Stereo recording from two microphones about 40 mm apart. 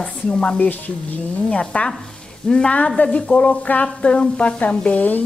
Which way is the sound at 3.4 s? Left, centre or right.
Left.